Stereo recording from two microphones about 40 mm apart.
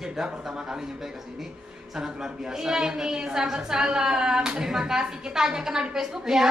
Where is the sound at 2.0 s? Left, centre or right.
Centre.